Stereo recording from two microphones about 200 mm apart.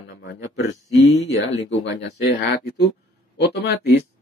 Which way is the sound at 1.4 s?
65° left (ahead or behind).